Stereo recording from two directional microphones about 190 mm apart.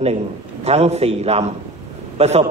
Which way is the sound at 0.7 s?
35° right (ahead or behind).